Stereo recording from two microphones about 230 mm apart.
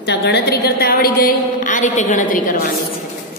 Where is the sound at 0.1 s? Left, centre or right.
Left.